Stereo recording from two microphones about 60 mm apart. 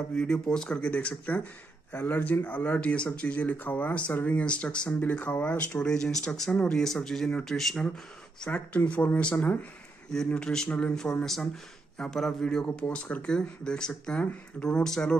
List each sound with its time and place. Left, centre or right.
0.1 s speech: centre
8.5 s speech: left
10.1 s speech: centre